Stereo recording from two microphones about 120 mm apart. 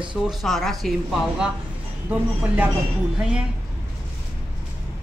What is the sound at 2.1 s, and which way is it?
A woman's voice, 15° right (ahead or behind).